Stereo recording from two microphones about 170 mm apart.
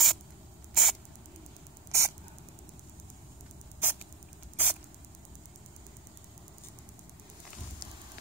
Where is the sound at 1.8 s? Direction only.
15° right (ahead or behind).